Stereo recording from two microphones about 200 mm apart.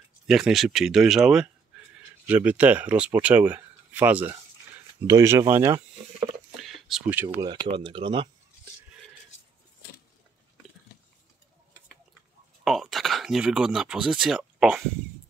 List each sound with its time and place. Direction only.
0.3 s speech: centre (ahead or behind)
6.5 s a sound: centre (ahead or behind)
7.3 s speech: 20° right (ahead or behind)
12.6 s speech: centre (ahead or behind)